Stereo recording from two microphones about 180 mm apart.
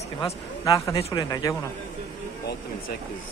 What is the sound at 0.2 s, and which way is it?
Speech, 20° left (ahead or behind).